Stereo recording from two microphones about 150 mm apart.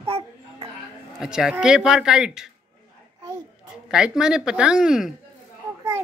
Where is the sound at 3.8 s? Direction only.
5° right (ahead or behind).